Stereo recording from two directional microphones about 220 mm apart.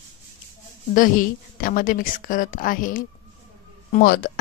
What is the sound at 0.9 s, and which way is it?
Speech, 40° left (ahead or behind).